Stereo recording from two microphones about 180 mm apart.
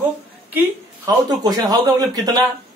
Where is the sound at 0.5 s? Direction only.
20° right (ahead or behind).